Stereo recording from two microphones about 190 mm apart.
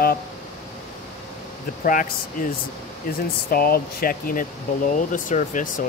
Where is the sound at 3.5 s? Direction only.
50° left (ahead or behind).